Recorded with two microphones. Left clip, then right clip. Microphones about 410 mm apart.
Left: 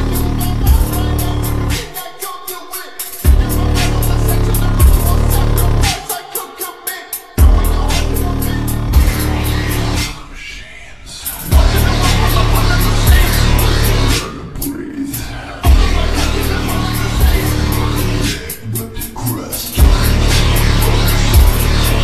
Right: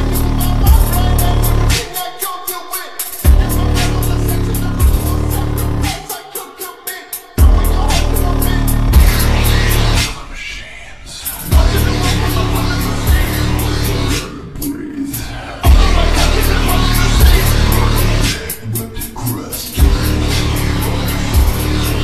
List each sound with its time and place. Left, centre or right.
0.0 s music: centre
0.4 s music: right
3.2 s music: centre; by 6.1 s left
7.3 s music: centre; by 10.1 s right
11.4 s music: centre; by 14.3 s left
15.6 s music: right
19.7 s music: left